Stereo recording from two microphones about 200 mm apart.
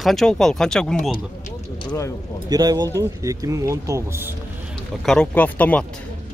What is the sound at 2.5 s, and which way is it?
Speech, 20° right (ahead or behind).